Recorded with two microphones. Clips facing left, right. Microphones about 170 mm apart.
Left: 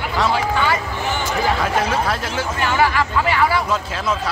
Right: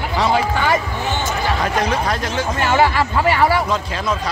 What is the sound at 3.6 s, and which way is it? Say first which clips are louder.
Speech: right 1 dB; 5° left (ahead or behind).